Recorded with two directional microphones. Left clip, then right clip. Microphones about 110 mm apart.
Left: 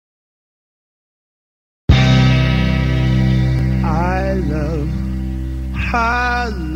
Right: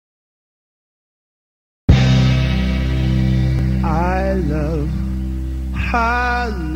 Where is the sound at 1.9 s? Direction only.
30° left (ahead or behind).